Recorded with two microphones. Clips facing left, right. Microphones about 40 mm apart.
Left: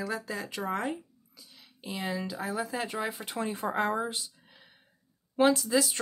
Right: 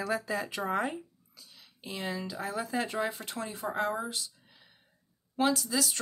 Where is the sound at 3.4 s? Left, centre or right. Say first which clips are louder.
Left 2 dB; left.